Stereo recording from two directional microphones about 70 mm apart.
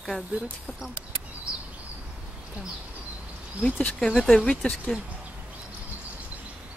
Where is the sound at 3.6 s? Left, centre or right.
Centre.